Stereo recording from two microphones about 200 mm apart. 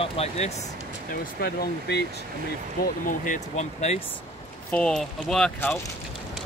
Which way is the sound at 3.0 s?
40° left (ahead or behind).